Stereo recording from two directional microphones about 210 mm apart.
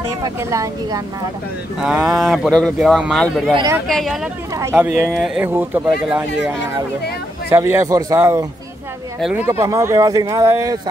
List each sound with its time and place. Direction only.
0.2 s speech: 15° right (ahead or behind)
1.8 s speech: 5° right (ahead or behind)
3.5 s speech: 15° right (ahead or behind)
3.8 s speech: centre (ahead or behind)
4.6 s speech: 10° right (ahead or behind)
9.5 s speech: 15° right (ahead or behind)